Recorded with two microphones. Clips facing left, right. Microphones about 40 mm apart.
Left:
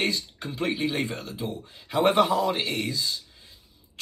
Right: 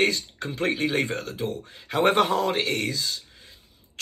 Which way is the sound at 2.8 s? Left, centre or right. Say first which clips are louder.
Right 1 dB; right.